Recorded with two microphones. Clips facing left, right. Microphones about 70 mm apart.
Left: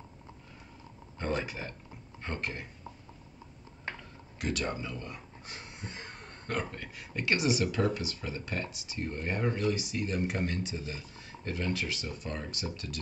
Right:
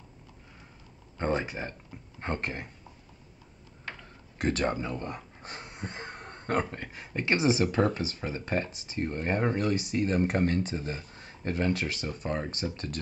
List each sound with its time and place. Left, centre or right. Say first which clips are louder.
1.1 s speech: right 4 dB; right
2.1 s speech: right 4 dB; right
4.4 s speech: right 5 dB; right